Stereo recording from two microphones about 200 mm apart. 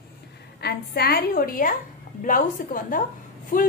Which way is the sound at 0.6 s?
55° left (ahead or behind).